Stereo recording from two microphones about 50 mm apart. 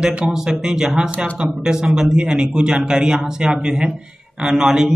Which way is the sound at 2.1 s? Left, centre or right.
Centre.